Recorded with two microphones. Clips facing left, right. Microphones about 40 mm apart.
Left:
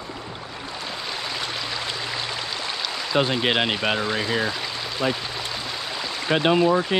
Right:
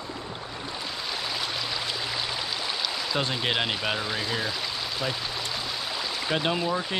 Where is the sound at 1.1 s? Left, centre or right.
Centre.